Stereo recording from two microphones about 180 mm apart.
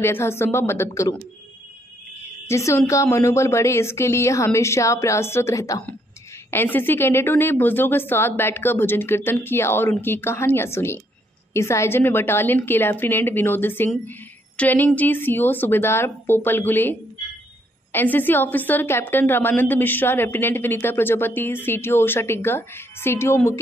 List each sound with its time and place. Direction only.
0.0 s a woman's voice: 15° left (ahead or behind)
2.4 s a woman's voice: 15° left (ahead or behind)
17.9 s a woman's voice: 10° left (ahead or behind)